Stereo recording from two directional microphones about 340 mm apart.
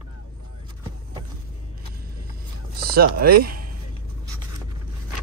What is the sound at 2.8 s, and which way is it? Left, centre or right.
Speech, right.